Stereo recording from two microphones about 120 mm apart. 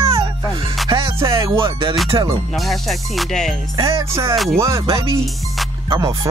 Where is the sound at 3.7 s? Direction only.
50° right (ahead or behind).